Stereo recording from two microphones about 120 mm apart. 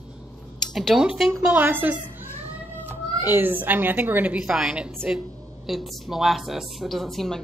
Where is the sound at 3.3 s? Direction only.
15° right (ahead or behind); by 7.4 s centre (ahead or behind).